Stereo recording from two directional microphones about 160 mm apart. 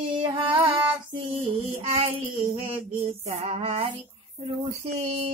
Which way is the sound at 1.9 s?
35° right (ahead or behind).